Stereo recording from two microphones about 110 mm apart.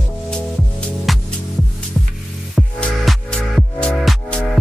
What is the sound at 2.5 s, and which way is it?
Music, centre (ahead or behind).